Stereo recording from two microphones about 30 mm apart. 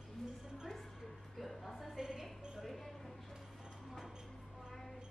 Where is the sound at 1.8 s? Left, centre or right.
Centre.